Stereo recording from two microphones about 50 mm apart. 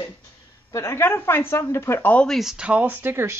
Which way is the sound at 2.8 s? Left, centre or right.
Right.